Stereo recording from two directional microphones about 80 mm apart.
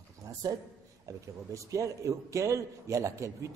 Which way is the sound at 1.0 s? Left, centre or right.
Right.